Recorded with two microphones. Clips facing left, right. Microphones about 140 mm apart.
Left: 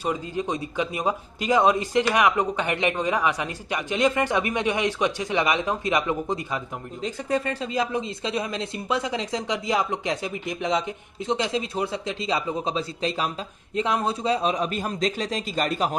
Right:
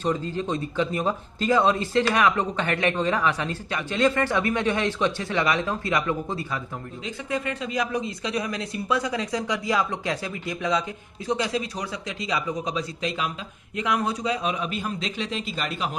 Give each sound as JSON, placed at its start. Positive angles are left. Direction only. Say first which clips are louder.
{"t": 0.0, "sound": "speech", "louder": "right 1 dB", "side_deg": 10}
{"t": 7.2, "sound": "a man's voice", "louder": "left 2 dB", "side_deg": 35}